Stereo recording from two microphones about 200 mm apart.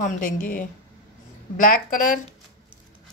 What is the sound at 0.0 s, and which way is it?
Speech, 45° left (ahead or behind).